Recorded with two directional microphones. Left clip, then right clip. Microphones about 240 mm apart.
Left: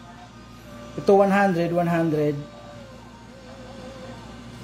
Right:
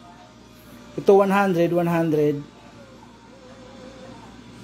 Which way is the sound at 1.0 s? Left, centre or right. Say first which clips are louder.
Right 1 dB; right.